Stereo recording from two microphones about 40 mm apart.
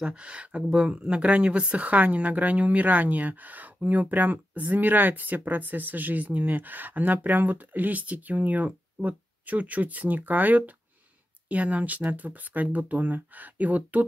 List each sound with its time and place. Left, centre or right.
0.0 s speech: right
11.4 s speech: right